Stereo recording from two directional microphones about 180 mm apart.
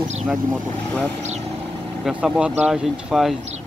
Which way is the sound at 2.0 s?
5° right (ahead or behind).